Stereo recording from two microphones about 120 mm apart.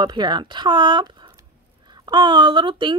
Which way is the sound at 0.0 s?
40° right (ahead or behind).